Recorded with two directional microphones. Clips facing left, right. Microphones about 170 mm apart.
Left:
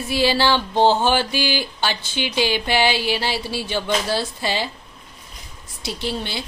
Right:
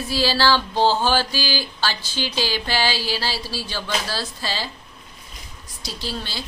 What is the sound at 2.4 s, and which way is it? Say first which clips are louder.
Speech: left 5 dB; 20° left (ahead or behind).